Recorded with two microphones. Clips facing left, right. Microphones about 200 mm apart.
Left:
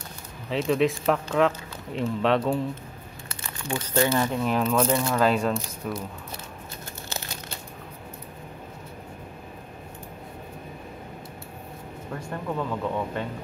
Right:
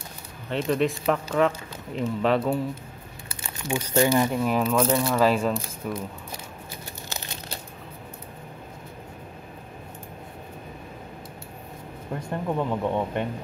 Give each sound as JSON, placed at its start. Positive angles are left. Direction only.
{"t": 0.5, "sound": "speech", "side_deg": 0}
{"t": 3.3, "sound": "speech", "side_deg": -15}
{"t": 12.5, "sound": "speech", "side_deg": -20}